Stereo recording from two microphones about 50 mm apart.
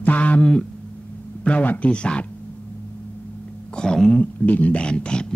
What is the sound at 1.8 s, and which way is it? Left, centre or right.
Speech, left.